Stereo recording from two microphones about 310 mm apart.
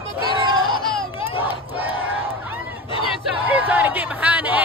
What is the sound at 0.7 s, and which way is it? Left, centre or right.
Baby cry, centre.